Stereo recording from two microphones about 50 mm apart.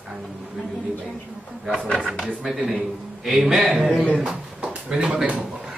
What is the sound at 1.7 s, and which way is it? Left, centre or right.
Speech, centre.